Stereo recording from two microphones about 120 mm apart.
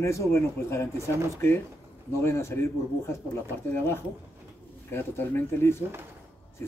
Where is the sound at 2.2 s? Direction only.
20° left (ahead or behind).